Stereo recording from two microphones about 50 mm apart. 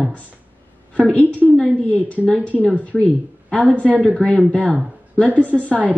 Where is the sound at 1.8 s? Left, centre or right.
Left.